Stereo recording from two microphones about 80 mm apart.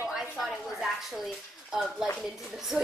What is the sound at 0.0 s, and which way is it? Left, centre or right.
Speech, centre.